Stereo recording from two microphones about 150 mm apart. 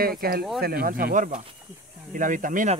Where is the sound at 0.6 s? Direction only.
90° right; by 2.7 s 60° right (ahead or behind).